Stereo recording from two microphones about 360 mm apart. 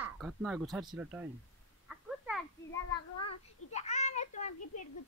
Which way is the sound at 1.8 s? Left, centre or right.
Centre.